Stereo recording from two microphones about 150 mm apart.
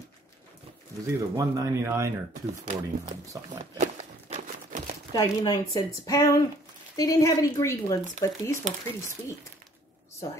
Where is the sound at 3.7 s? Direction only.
55° right (ahead or behind).